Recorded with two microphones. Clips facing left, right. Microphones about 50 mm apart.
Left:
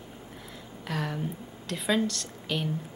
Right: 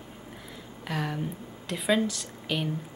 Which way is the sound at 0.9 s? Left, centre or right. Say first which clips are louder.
Right 1 dB; centre.